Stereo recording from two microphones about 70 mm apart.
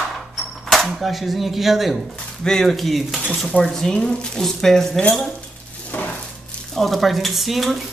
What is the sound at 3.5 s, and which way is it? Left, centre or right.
Speech, centre.